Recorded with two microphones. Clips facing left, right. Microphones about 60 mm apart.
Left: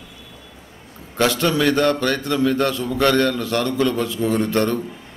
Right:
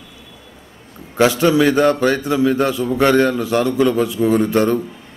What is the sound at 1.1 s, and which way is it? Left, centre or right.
A man's voice, centre.